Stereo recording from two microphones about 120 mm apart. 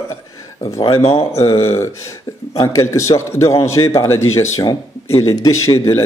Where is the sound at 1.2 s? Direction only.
25° left (ahead or behind).